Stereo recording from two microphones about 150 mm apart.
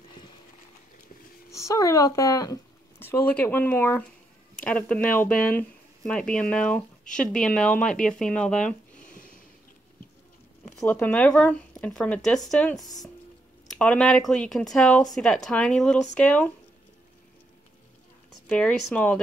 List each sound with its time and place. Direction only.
1.5 s speech: 20° left (ahead or behind); by 8.7 s 5° left (ahead or behind)
9.0 s a sound: 65° left (ahead or behind)
10.8 s speech: 10° left (ahead or behind)
18.3 s speech: 5° left (ahead or behind)